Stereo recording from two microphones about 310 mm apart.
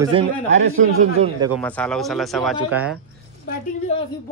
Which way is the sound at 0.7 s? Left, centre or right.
Right.